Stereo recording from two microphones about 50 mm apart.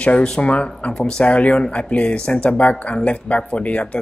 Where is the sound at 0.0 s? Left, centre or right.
Left.